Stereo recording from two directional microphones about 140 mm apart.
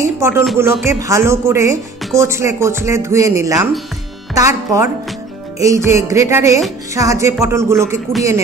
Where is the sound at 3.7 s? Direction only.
Centre (ahead or behind).